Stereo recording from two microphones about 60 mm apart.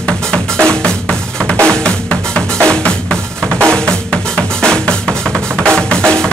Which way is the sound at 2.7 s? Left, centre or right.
Centre.